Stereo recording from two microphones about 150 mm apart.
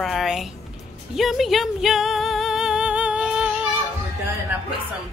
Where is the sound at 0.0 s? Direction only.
Centre (ahead or behind).